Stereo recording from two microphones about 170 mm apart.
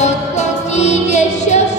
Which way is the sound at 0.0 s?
40° left (ahead or behind).